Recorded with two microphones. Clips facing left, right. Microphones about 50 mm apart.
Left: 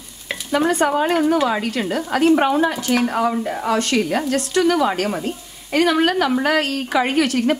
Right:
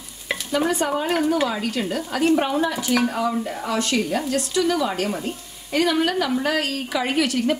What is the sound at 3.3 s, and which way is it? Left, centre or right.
Speech, left.